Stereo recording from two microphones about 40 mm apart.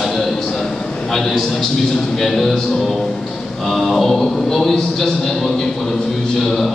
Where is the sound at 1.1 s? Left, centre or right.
Centre.